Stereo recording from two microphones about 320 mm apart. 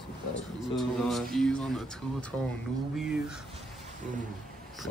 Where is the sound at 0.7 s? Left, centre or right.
Centre.